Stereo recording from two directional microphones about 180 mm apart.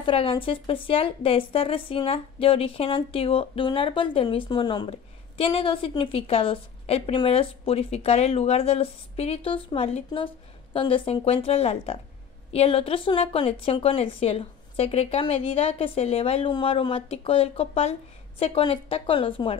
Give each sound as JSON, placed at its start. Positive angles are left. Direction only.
{"t": 0.0, "sound": "a woman's voice", "side_deg": 30}